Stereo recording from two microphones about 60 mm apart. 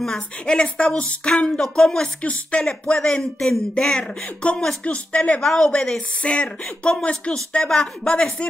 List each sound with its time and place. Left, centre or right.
0.0 s speech: centre
5.4 s speech: centre